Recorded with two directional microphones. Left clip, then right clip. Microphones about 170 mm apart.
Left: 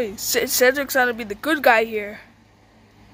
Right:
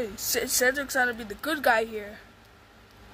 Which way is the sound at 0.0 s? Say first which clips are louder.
Left 7 dB; 15° left (ahead or behind).